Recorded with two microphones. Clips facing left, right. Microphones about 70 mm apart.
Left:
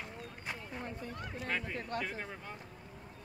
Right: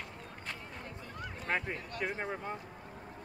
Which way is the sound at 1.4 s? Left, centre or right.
Right.